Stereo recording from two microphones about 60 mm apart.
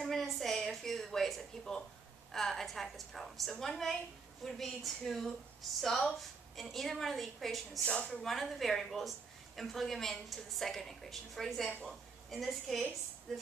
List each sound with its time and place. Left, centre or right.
0.0 s a woman's voice: centre
7.8 s a woman's voice: centre
8.2 s a woman's voice: centre